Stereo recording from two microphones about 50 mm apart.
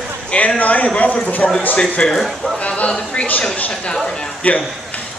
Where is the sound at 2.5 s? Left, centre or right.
Left.